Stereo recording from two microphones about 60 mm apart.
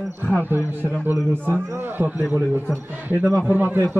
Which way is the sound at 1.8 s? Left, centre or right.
Right.